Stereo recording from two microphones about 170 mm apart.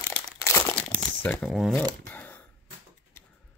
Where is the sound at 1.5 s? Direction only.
Centre (ahead or behind).